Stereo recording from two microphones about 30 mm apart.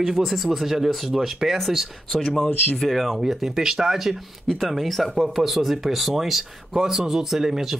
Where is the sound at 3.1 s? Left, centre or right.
Centre.